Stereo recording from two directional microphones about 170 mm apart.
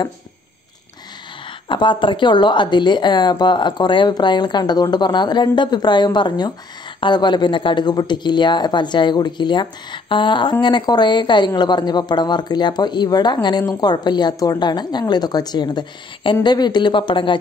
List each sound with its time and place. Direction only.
1.7 s a woman's voice: 30° left (ahead or behind)